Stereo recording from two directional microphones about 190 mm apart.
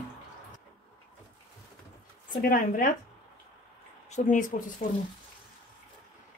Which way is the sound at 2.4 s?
45° left (ahead or behind).